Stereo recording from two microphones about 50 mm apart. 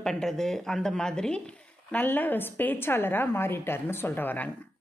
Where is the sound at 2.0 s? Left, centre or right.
Left.